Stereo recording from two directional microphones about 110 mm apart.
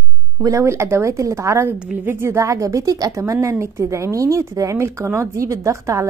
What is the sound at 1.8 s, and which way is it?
Speech, 10° right (ahead or behind).